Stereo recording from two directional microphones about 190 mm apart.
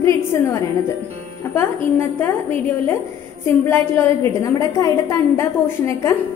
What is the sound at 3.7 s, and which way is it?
A woman's voice, 15° left (ahead or behind).